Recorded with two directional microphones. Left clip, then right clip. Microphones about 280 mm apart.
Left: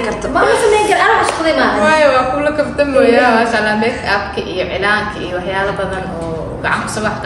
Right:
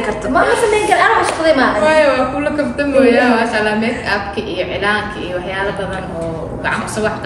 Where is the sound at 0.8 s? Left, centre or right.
Centre.